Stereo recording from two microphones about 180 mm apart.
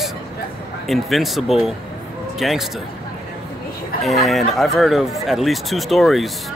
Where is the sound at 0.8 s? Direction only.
Centre (ahead or behind).